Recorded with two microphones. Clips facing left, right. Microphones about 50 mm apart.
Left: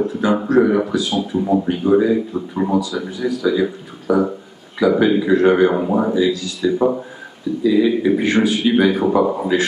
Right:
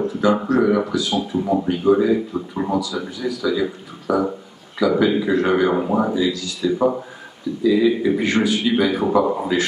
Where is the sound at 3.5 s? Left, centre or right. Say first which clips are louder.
Left 3 dB; left.